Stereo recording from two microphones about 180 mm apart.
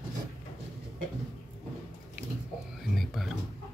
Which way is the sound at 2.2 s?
10° right (ahead or behind).